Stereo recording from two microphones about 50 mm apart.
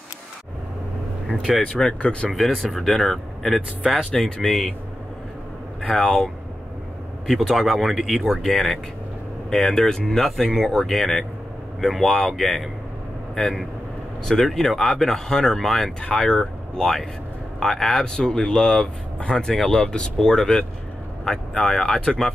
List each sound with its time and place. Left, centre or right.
2.0 s speech: left
2.3 s speech: centre
5.9 s speech: centre
9.5 s speech: centre
19.5 s speech: centre
21.2 s speech: centre